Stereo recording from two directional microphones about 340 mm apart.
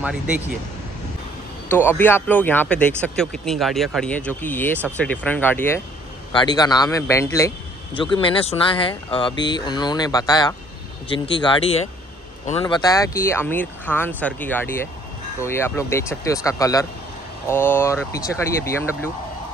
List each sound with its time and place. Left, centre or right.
0.0 s speech: centre
1.7 s a man's voice: centre